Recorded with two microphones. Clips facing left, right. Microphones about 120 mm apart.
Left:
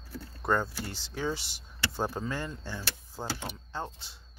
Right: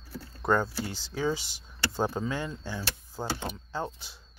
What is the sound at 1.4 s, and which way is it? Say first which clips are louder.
Speech: right 1 dB; 65° left (ahead or behind).